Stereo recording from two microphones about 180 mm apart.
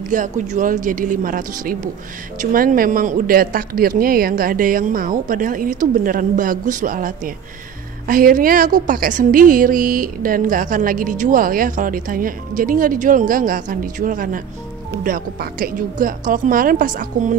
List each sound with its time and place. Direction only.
0.1 s a woman's voice: 45° right (ahead or behind)